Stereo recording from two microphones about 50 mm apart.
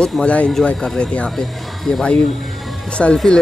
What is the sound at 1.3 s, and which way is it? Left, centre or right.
Speech, centre.